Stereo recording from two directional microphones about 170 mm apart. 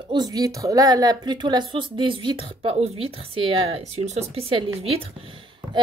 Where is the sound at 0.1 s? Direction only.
25° right (ahead or behind).